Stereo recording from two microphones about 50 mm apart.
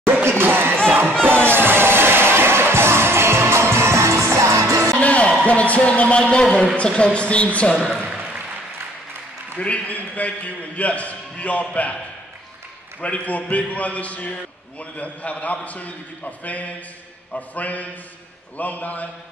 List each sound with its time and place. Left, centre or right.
0.3 s a sound: right
0.8 s crowd: right
1.4 s music: right
5.0 s a sound: left
5.4 s a man's voice: left
9.6 s a man's voice: left
13.0 s a man's voice: left